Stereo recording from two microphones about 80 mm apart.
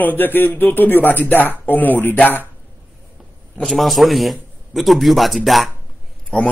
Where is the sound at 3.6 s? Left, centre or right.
Centre.